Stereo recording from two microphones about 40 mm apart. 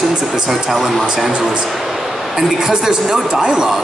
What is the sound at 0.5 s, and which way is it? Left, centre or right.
Speech, centre.